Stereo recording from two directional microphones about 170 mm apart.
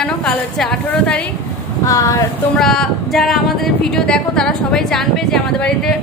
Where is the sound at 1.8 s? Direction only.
20° left (ahead or behind).